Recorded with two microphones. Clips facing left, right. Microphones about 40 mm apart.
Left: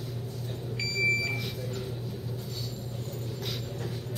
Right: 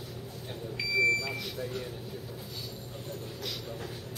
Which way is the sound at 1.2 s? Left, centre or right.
Centre.